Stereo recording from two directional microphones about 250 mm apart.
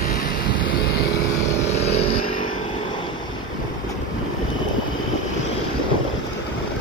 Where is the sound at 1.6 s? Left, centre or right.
Left.